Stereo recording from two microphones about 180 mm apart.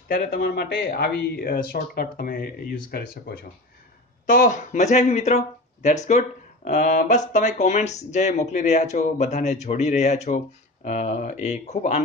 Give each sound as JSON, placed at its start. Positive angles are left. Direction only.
{"t": 0.1, "sound": "speech", "side_deg": 55}